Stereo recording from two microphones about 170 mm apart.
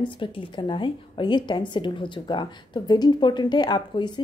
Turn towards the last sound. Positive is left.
turn(degrees=25)  # may be behind; listen again after turning